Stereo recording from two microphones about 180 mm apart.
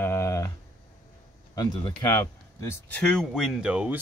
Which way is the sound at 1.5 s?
25° left (ahead or behind).